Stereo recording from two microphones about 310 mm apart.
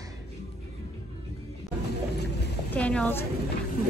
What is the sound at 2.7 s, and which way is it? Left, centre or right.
Speech, centre.